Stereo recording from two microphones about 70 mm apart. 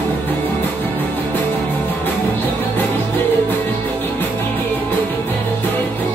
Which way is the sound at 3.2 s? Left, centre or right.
Left.